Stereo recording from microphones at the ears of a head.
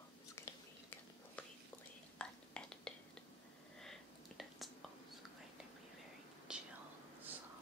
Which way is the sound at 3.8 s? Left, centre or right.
Centre.